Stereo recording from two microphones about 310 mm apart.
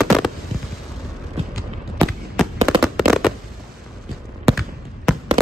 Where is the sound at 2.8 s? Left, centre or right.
Centre.